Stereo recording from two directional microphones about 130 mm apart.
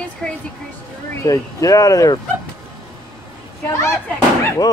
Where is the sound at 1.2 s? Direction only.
30° left (ahead or behind).